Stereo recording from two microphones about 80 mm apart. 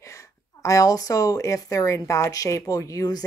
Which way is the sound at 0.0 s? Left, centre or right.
Left.